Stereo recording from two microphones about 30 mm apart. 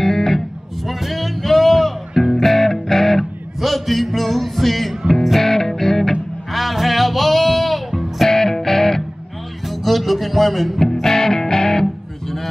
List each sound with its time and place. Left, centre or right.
0.0 s music: centre
0.8 s music: centre
3.6 s music: centre
6.5 s music: centre
8.3 s music: centre
9.7 s music: centre
10.8 s music: centre